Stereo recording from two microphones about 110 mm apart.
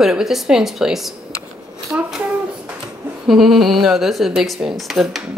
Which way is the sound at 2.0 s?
5° right (ahead or behind).